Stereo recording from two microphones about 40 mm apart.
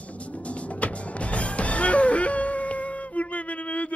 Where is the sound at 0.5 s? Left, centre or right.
Left.